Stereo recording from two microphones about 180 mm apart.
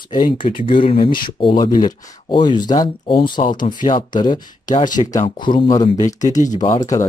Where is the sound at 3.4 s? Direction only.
50° left (ahead or behind).